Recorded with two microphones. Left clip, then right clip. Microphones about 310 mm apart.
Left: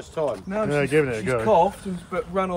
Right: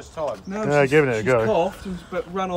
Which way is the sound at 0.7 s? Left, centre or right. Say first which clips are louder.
Right 5 dB; centre.